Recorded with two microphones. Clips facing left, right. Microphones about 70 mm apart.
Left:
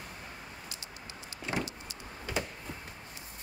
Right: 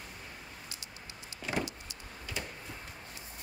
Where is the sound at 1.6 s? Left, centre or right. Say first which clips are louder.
Left 2 dB; left.